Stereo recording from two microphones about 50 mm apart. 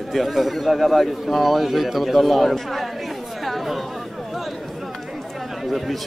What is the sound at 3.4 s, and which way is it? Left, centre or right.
Chatter, centre.